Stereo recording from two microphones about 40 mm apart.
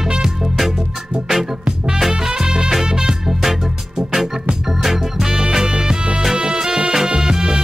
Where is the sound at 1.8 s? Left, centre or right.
Centre.